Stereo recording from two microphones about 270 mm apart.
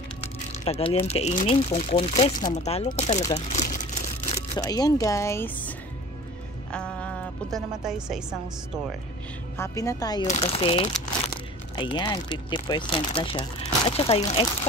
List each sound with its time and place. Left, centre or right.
0.7 s speech: left
4.3 s a woman's voice: centre
9.6 s speech: centre
10.2 s speech: left